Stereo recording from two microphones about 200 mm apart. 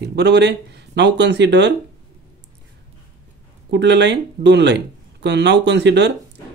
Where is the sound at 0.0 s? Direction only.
55° right (ahead or behind).